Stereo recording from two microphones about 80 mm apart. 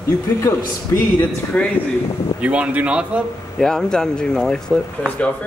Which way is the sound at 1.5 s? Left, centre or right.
Centre.